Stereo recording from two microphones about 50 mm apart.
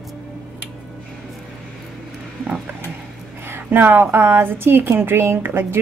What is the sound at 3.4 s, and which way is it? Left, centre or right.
A woman's voice, right.